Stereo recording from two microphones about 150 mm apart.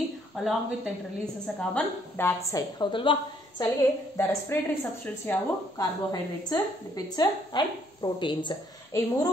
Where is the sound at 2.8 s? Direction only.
35° left (ahead or behind).